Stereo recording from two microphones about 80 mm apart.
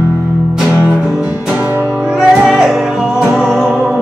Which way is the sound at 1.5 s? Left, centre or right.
Right.